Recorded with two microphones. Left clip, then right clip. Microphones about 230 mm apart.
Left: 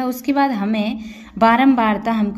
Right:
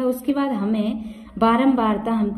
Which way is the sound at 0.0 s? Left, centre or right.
Left.